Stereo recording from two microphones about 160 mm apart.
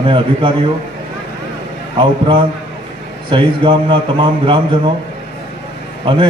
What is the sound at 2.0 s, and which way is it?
A man's voice, 30° right (ahead or behind).